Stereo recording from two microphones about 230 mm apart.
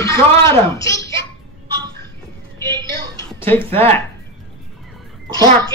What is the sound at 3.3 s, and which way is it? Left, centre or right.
Speech, centre.